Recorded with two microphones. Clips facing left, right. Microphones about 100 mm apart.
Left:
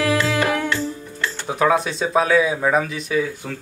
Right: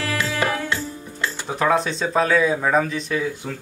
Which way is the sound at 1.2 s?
10° right (ahead or behind).